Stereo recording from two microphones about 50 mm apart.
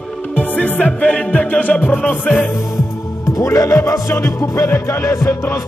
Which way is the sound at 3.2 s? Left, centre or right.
Left.